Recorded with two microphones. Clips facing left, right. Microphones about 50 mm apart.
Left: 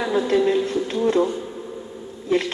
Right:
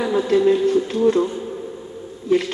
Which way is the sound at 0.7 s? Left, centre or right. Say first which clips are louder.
Right 5 dB; centre.